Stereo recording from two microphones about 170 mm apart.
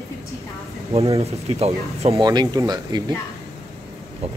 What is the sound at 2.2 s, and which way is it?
Speech, 25° right (ahead or behind).